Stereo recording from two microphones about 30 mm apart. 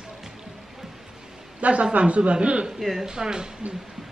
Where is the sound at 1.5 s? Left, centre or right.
Right.